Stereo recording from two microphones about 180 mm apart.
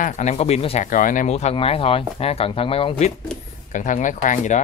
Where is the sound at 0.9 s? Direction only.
50° left (ahead or behind); by 3.1 s 30° left (ahead or behind).